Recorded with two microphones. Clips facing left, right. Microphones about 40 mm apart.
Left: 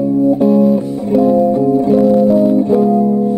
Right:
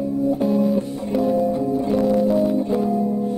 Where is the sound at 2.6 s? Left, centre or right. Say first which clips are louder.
Left 9 dB; centre.